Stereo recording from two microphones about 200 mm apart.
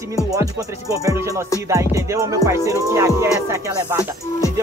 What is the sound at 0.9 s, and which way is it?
Music, 15° right (ahead or behind).